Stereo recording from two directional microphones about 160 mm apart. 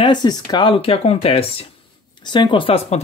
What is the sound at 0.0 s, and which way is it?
Speech, 25° left (ahead or behind).